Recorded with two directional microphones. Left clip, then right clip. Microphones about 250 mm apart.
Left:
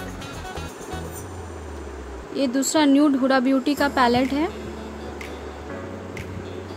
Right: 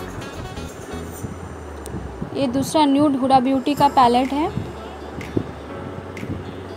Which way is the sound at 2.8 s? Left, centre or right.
Centre.